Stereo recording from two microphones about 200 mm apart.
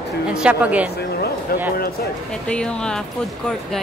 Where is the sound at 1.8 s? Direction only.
50° left (ahead or behind).